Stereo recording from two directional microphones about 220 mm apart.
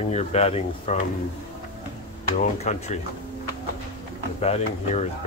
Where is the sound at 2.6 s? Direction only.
30° left (ahead or behind).